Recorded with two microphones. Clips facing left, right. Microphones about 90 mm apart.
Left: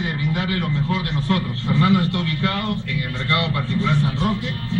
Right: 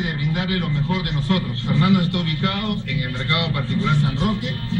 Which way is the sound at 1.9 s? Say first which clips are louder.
Even; 35° left (ahead or behind).